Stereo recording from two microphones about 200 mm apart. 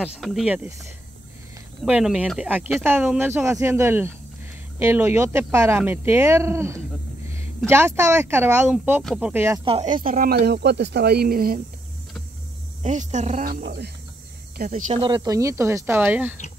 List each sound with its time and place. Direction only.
0.0 s speech: centre (ahead or behind)
1.9 s speech: 5° right (ahead or behind)
9.7 s speech: 30° right (ahead or behind); by 11.6 s 45° right (ahead or behind)
12.8 s speech: 35° right (ahead or behind); by 13.9 s 55° right (ahead or behind)
14.6 s speech: 40° right (ahead or behind)
15.0 s speech: 20° right (ahead or behind)